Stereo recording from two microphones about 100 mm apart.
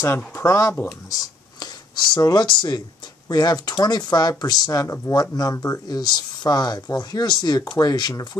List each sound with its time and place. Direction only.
0.3 s speech: 30° left (ahead or behind)